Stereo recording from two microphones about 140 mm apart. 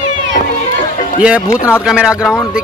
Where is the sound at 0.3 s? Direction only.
65° left (ahead or behind).